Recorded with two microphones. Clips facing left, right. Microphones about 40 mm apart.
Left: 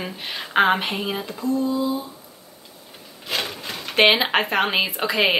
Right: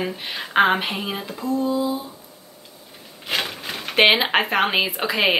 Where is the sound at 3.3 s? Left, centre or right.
Centre.